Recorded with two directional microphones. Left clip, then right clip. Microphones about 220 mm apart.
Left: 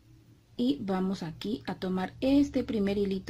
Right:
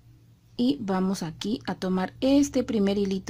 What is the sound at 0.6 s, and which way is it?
Speech, 15° right (ahead or behind).